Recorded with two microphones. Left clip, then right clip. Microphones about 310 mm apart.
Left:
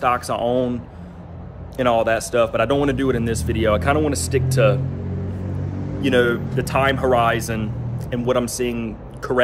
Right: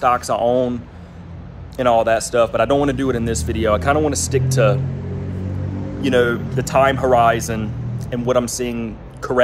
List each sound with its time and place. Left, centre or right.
0.0 s speech: centre
1.8 s speech: centre
6.0 s speech: centre